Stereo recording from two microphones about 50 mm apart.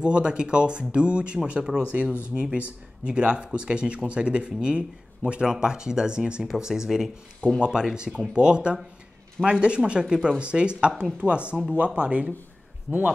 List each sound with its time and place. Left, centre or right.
0.0 s speech: centre